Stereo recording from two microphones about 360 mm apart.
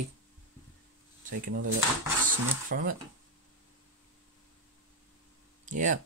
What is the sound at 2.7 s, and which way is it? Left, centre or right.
Speech, right.